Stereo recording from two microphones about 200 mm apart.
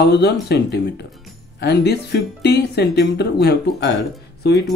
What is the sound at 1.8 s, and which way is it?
Speech, 55° left (ahead or behind).